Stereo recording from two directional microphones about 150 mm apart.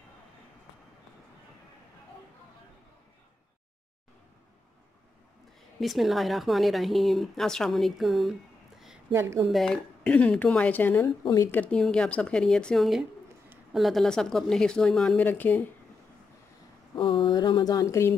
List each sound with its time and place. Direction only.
5.8 s speech: centre (ahead or behind)
9.1 s a woman's voice: 15° right (ahead or behind)
9.5 s speech: 5° left (ahead or behind)
16.9 s speech: 30° left (ahead or behind)